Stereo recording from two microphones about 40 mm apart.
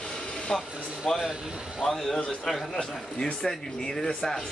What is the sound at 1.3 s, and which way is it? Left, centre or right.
Speech, right.